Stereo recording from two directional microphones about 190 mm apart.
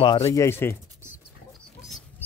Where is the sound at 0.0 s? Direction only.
25° left (ahead or behind).